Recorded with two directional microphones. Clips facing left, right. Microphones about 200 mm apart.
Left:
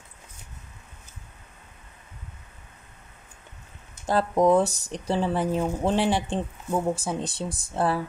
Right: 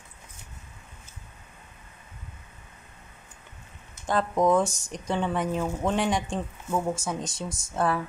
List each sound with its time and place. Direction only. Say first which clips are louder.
4.0 s speech: left 3 dB; 35° left (ahead or behind)